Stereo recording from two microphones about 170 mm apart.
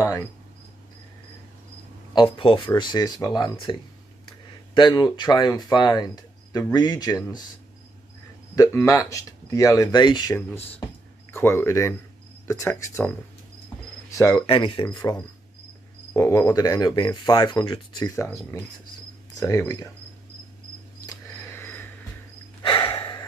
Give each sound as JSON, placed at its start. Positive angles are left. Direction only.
{"t": 2.3, "sound": "speech", "side_deg": 30}
{"t": 4.7, "sound": "speech", "side_deg": 25}
{"t": 8.5, "sound": "speech", "side_deg": 20}
{"t": 14.1, "sound": "speech", "side_deg": 20}
{"t": 14.4, "sound": "speech", "side_deg": 30}
{"t": 21.1, "sound": "a sound", "side_deg": 15}
{"t": 22.6, "sound": "a sound", "side_deg": 30}